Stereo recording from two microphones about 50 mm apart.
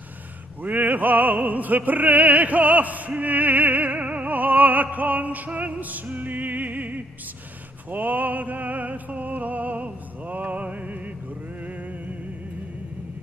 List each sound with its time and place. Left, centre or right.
0.6 s opera: right
7.9 s music: right